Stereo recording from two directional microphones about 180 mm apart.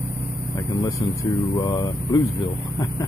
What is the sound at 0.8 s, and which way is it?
Speech, 15° left (ahead or behind).